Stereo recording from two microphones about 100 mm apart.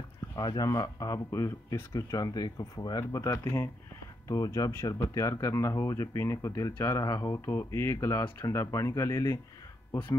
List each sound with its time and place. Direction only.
0.4 s speech: 45° left (ahead or behind)
0.7 s speech: 35° left (ahead or behind)